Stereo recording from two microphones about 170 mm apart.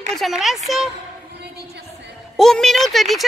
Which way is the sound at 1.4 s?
75° right (ahead or behind).